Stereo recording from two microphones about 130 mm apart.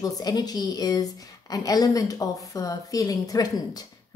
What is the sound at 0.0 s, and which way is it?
A woman's voice, 30° left (ahead or behind).